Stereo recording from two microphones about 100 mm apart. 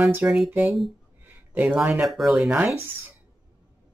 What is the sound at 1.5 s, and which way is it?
Speech, 15° right (ahead or behind).